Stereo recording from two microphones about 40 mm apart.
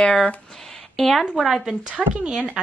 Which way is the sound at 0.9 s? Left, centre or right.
Centre.